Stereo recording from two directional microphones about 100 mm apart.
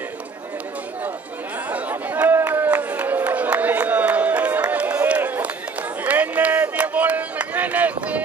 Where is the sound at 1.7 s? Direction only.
15° right (ahead or behind).